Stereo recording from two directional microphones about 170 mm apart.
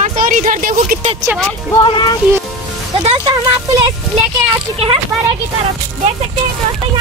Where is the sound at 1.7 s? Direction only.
25° left (ahead or behind).